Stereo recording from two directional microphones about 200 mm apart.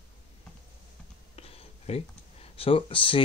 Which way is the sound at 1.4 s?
30° left (ahead or behind).